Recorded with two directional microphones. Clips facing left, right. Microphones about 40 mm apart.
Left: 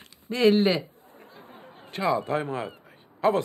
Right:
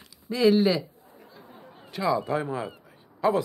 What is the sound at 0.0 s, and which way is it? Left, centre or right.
A man's voice, left.